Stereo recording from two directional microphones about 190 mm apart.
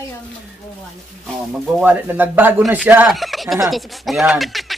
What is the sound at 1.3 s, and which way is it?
Speech, 5° right (ahead or behind).